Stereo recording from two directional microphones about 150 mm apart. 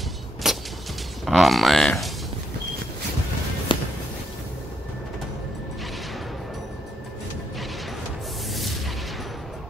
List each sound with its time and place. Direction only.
0.4 s music: 5° right (ahead or behind)
1.2 s speech: centre (ahead or behind)
3.7 s music: 35° left (ahead or behind)
8.5 s artillery fire: centre (ahead or behind)